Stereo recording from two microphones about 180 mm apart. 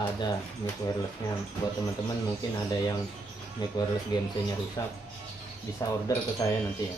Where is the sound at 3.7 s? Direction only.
25° left (ahead or behind).